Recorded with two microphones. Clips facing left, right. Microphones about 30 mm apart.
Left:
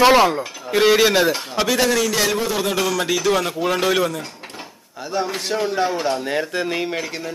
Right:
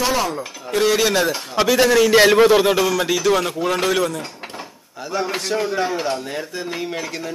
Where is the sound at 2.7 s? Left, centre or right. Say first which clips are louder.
Right 2 dB; centre.